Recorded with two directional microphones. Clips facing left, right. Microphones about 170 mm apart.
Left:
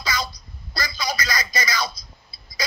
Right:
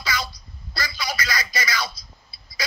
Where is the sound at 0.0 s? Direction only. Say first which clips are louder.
Left 1 dB; 40° left (ahead or behind).